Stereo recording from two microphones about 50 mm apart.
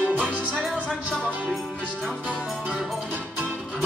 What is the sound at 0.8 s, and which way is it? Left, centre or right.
Music, centre.